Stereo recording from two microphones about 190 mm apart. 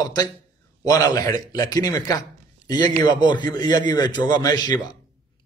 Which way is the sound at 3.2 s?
20° left (ahead or behind).